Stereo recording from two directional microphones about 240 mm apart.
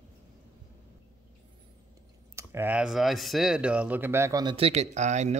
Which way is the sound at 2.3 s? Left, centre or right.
Centre.